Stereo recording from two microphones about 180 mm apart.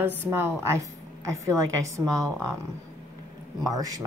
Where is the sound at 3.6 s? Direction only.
20° right (ahead or behind).